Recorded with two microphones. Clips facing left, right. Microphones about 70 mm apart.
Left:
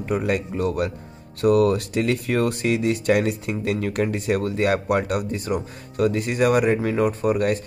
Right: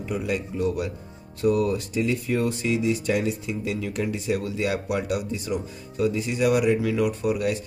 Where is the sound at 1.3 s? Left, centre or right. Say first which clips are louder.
Left 5 dB; left.